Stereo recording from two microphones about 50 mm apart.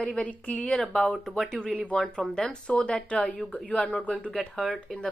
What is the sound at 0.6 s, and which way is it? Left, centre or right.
A woman's voice, centre.